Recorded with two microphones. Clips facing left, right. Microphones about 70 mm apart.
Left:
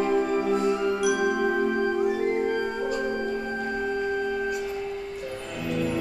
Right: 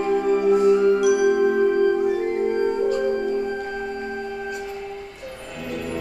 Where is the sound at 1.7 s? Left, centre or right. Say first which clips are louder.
Right 6 dB; centre.